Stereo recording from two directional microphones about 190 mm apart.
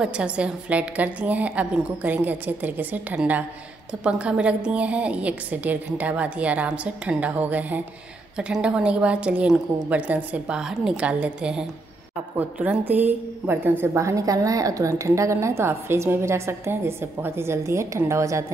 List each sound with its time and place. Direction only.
0.0 s a woman's voice: 5° right (ahead or behind)